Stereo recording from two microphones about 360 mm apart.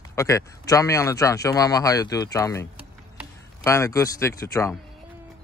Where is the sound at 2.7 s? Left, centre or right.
Centre.